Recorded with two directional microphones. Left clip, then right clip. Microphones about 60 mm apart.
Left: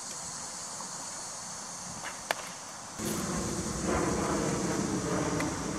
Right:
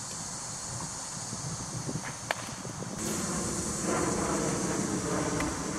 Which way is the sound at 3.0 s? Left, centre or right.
Left.